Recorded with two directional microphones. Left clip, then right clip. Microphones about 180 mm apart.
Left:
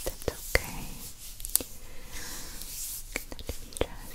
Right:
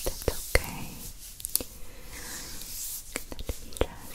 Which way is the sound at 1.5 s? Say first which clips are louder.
Left 2 dB; 5° right (ahead or behind).